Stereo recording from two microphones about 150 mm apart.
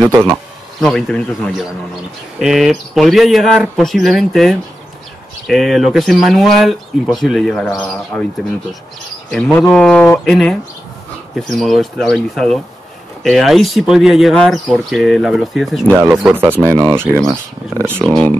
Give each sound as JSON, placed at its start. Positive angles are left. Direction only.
{"t": 0.7, "sound": "speech", "side_deg": 5}
{"t": 9.3, "sound": "speech", "side_deg": 5}
{"t": 15.9, "sound": "speech", "side_deg": -15}
{"t": 18.0, "sound": "speech", "side_deg": 5}